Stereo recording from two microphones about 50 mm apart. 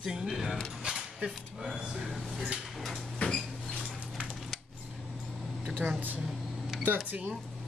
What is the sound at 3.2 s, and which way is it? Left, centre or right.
Cupboard open or close, left.